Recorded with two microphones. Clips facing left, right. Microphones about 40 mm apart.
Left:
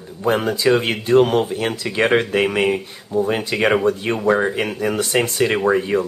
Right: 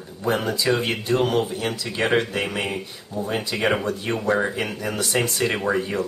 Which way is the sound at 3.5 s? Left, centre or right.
Left.